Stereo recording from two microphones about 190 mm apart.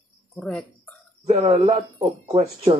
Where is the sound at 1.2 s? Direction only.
35° right (ahead or behind).